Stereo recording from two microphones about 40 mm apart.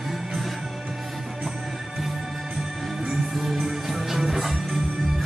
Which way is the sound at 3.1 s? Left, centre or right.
Centre.